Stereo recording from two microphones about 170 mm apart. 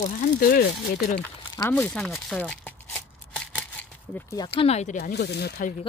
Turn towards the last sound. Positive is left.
turn(degrees=75)  # may be behind; listen again after turning